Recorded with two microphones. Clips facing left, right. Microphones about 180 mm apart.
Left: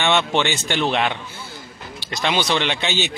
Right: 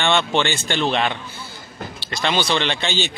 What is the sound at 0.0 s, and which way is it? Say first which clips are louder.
Speech: even; 10° left (ahead or behind).